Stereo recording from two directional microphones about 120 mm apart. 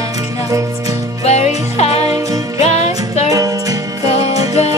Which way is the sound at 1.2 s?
60° left (ahead or behind).